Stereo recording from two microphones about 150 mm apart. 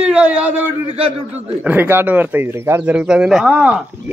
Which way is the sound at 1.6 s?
15° right (ahead or behind).